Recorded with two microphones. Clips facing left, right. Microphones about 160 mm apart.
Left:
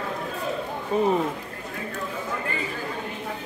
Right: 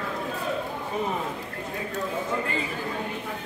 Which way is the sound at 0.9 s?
35° left (ahead or behind).